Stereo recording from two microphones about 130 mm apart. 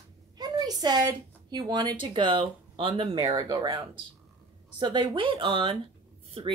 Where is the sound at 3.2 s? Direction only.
30° right (ahead or behind).